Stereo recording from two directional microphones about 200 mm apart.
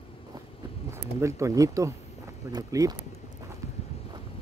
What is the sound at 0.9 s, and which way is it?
Speech, 15° right (ahead or behind).